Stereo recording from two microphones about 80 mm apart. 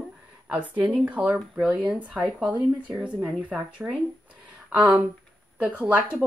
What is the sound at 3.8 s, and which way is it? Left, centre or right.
Speech, centre.